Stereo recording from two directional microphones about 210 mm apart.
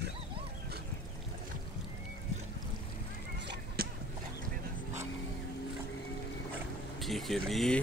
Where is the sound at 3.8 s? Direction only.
45° right (ahead or behind).